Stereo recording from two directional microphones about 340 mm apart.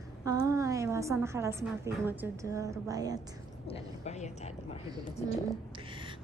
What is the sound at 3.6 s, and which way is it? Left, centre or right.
Speech, centre.